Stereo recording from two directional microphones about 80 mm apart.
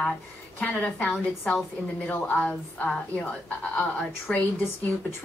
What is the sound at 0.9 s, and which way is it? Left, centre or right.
Speech, centre.